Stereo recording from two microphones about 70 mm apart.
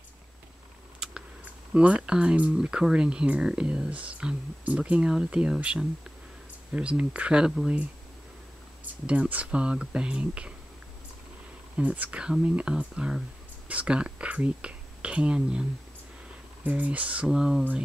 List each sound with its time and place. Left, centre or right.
0.9 s speech: centre
9.0 s speech: centre
11.7 s speech: right
16.6 s speech: right
17.3 s speech: centre